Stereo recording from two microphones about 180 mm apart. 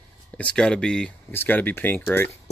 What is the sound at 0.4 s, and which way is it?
Speech, 5° left (ahead or behind).